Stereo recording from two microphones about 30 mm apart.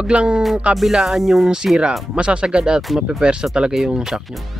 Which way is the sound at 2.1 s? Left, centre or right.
Right.